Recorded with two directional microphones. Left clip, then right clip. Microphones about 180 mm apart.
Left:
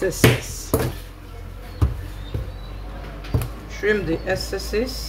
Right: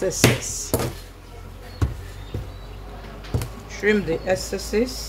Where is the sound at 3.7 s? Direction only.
40° right (ahead or behind).